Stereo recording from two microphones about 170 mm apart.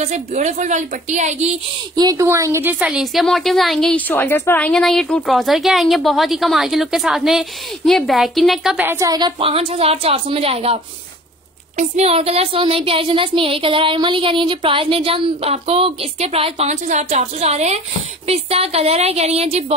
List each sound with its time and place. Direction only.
0.0 s a woman's voice: 40° right (ahead or behind)
2.0 s a woman's voice: 20° right (ahead or behind); by 19.6 s 35° right (ahead or behind)